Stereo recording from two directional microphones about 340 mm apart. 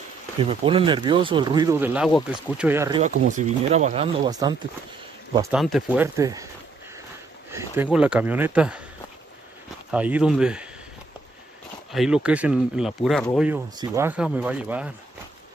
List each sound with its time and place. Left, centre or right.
0.4 s speech: centre
3.0 s speech: right
7.5 s speech: centre
9.8 s speech: centre
11.9 s speech: centre